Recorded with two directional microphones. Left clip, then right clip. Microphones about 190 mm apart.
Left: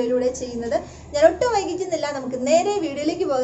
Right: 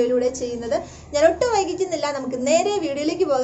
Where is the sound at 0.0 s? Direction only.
20° right (ahead or behind).